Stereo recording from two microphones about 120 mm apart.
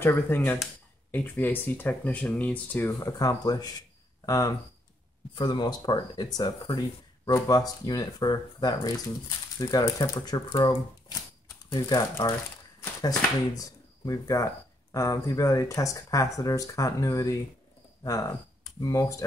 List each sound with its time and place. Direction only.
0.0 s speech: 20° left (ahead or behind)
2.9 s speech: 25° left (ahead or behind)
13.6 s speech: 30° left (ahead or behind)